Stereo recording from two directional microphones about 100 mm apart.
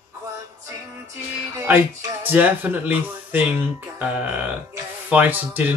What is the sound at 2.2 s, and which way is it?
Speech, 20° right (ahead or behind).